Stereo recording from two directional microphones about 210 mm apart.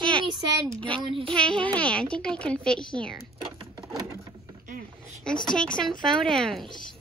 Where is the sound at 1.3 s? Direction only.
5° left (ahead or behind).